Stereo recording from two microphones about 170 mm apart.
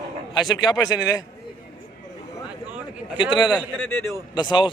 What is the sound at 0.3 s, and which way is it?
Speech, 25° left (ahead or behind).